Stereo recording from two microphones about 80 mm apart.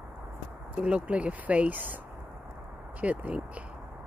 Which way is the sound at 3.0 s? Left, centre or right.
Centre.